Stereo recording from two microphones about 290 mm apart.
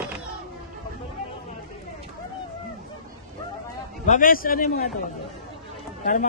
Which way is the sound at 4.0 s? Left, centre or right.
Left.